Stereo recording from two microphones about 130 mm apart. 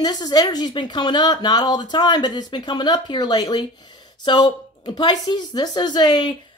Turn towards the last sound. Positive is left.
turn(degrees=35)  # may be behind; listen again after turning